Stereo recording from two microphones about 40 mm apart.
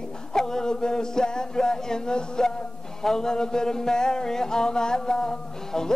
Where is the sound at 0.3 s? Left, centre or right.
Centre.